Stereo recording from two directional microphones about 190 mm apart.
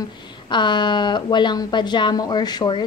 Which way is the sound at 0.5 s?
25° left (ahead or behind).